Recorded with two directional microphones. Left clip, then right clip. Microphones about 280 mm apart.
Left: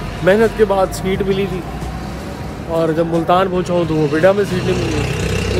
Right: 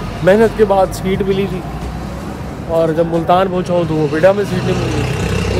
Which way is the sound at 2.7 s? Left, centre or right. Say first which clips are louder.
Right 2 dB; centre.